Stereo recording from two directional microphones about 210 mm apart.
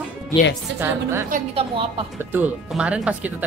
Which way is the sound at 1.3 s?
30° right (ahead or behind).